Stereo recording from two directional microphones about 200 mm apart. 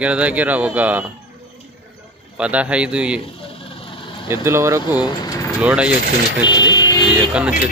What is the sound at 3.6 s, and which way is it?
Vehicle, 25° left (ahead or behind).